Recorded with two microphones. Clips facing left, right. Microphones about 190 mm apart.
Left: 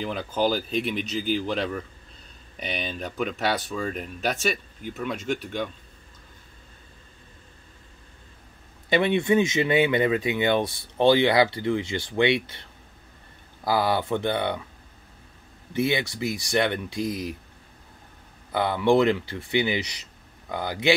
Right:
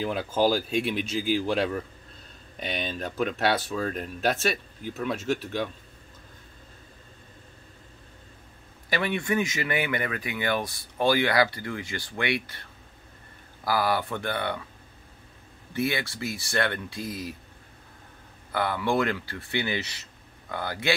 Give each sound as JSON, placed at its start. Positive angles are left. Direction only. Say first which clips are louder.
{"t": 0.0, "sound": "speech", "louder": "right 1 dB", "side_deg": -5}
{"t": 8.8, "sound": "speech", "louder": "left 6 dB", "side_deg": 25}
{"t": 13.7, "sound": "speech", "louder": "left 3 dB", "side_deg": 20}
{"t": 15.7, "sound": "speech", "louder": "left 3 dB", "side_deg": 20}
{"t": 18.5, "sound": "speech", "louder": "left 5 dB", "side_deg": 20}